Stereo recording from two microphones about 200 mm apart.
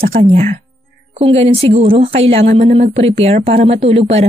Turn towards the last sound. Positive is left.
turn(degrees=-30)  # may be behind; listen again after turning